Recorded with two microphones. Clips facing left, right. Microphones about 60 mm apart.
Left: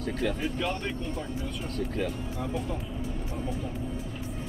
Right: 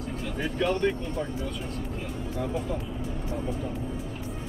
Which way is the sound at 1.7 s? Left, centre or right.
Left.